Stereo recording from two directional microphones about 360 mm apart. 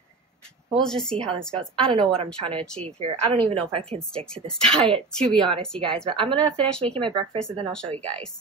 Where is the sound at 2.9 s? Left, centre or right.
Centre.